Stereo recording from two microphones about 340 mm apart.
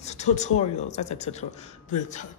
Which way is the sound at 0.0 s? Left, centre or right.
Centre.